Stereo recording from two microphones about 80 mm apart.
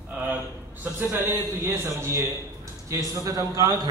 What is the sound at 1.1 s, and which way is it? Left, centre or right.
A man's voice, right.